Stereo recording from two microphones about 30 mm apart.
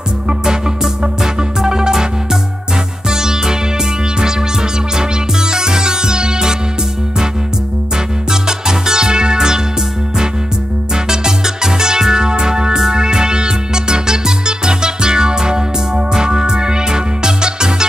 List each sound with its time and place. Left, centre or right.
1.2 s music: right
3.1 s music: centre
8.3 s music: right
11.1 s music: centre